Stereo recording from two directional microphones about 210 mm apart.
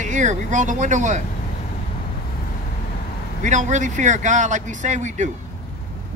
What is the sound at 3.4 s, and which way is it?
A man's voice, 35° right (ahead or behind).